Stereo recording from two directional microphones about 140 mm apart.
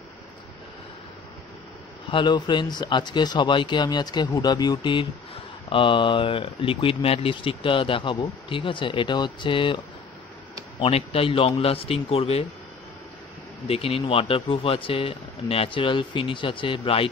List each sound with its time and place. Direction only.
2.0 s speech: 35° left (ahead or behind)
10.8 s a man's voice: 45° left (ahead or behind)
13.7 s speech: 45° left (ahead or behind)